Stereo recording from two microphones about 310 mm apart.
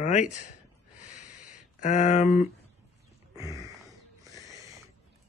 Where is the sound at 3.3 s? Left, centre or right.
Centre.